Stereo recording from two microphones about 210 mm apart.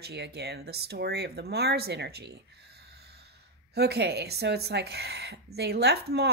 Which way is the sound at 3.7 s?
50° right (ahead or behind).